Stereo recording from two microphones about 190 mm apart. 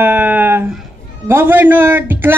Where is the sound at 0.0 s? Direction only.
10° right (ahead or behind).